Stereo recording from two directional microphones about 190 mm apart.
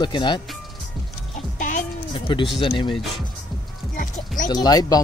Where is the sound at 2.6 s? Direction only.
25° left (ahead or behind).